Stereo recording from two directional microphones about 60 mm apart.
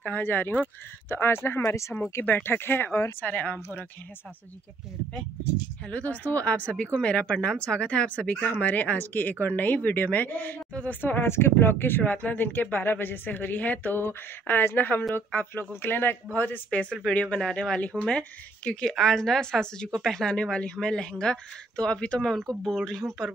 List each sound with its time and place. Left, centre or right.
0.0 s speech: left
1.7 s speech: left
2.2 s speech: left
5.9 s speech: left
10.7 s a woman's voice: left
11.0 s a woman's voice: left; by 18.9 s centre
18.9 s a woman's voice: centre
22.5 s a woman's voice: centre